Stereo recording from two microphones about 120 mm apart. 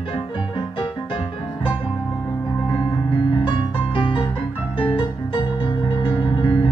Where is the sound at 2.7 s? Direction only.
30° left (ahead or behind).